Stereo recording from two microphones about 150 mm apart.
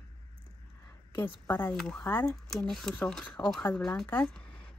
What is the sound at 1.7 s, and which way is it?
Speech, 5° left (ahead or behind).